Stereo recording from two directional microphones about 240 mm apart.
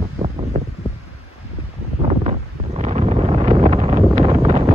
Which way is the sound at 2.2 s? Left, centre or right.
Right.